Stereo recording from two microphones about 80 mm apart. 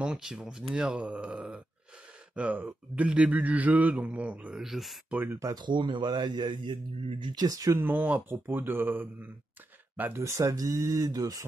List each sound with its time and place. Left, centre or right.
0.0 s speech: centre
4.6 s speech: centre
5.1 s speech: right
5.4 s speech: right
7.4 s speech: right
7.7 s speech: right
10.2 s speech: right